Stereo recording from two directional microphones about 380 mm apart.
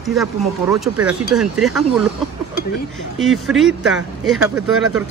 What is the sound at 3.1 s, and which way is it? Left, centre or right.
A man's voice, centre.